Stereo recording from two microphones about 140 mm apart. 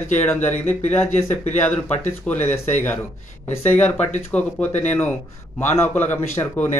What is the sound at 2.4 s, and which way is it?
A man's voice, 15° left (ahead or behind).